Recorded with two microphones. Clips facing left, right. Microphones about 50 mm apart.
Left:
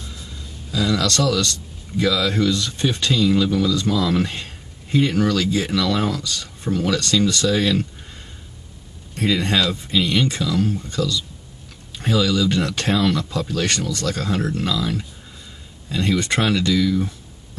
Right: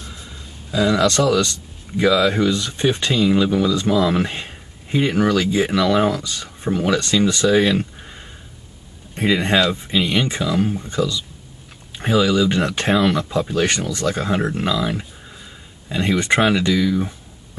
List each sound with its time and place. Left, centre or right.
0.0 s speech: right
9.1 s speech: right